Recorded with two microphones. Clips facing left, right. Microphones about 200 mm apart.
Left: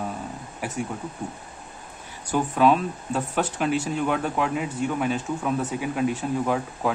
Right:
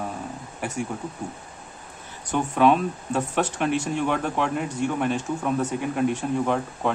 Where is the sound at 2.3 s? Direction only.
Centre (ahead or behind).